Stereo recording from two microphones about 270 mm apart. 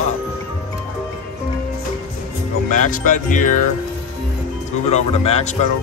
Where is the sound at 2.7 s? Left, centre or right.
Left.